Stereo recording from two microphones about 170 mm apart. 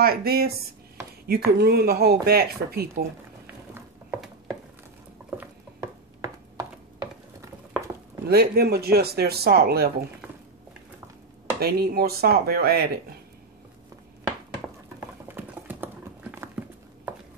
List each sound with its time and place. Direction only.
0.0 s speech: 65° right (ahead or behind)
3.4 s a sound: 10° right (ahead or behind)
8.3 s speech: 65° right (ahead or behind)
11.6 s speech: 65° right (ahead or behind)
15.2 s computer keyboard: 10° right (ahead or behind)